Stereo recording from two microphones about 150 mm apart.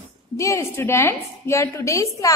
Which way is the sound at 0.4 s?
20° left (ahead or behind).